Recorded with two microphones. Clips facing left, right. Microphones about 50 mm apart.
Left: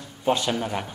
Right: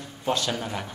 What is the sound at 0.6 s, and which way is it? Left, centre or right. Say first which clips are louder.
Speech: left 4 dB; centre.